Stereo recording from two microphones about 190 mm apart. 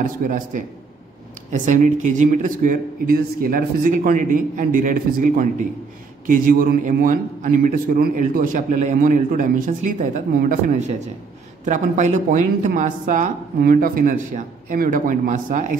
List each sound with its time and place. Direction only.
0.0 s a man's voice: 45° right (ahead or behind)